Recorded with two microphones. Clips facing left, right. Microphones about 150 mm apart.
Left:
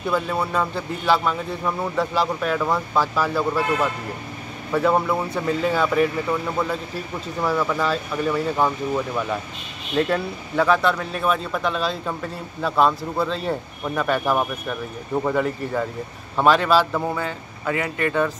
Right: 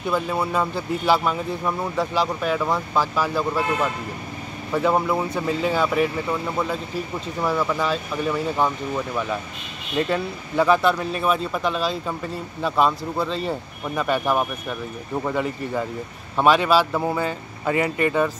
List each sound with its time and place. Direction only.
0.1 s speech: 5° right (ahead or behind)
4.7 s speech: 5° right (ahead or behind)
17.6 s speech: 25° right (ahead or behind)